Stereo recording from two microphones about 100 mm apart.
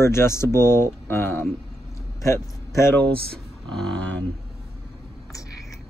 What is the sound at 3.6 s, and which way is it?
Speech, 5° left (ahead or behind).